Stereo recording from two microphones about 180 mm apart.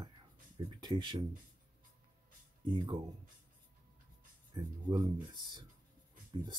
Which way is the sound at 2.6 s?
25° right (ahead or behind).